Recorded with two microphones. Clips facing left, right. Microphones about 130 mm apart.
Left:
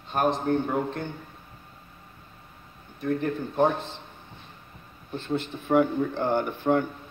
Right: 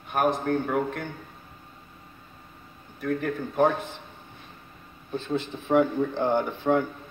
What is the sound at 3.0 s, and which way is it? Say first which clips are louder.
Speech: left 1 dB; 25° left (ahead or behind).